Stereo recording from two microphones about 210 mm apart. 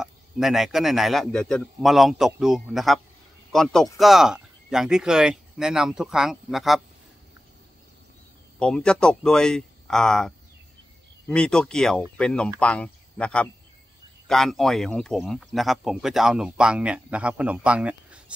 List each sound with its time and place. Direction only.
0.0 s speech: centre (ahead or behind)
8.5 s speech: 5° left (ahead or behind)